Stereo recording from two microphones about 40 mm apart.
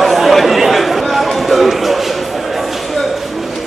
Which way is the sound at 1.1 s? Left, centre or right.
Centre.